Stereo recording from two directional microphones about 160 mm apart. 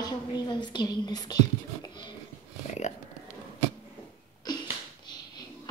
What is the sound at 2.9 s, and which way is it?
Speech, 50° left (ahead or behind).